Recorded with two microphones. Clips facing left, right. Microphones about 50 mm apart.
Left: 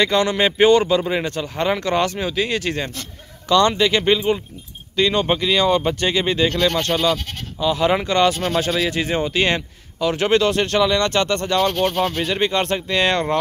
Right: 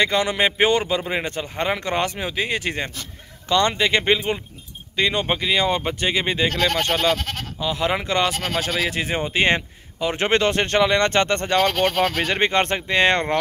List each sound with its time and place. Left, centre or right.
0.0 s speech: centre
5.2 s speech: centre
6.9 s speech: right
7.6 s speech: centre
8.8 s speech: centre; by 11.6 s right
11.6 s speech: right
12.2 s speech: right